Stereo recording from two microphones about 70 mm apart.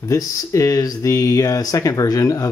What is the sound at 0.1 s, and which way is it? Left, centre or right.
Speech, left.